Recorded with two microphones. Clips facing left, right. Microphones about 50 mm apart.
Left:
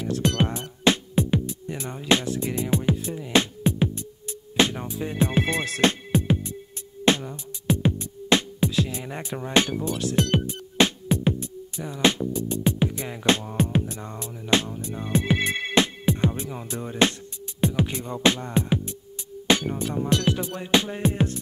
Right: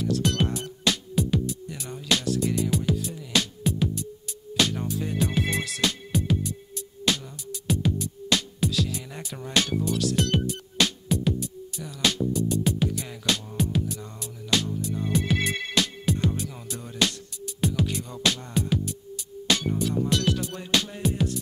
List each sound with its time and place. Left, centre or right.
0.0 s music: left